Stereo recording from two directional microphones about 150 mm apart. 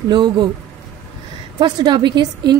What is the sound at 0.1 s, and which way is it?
Speech, 30° right (ahead or behind).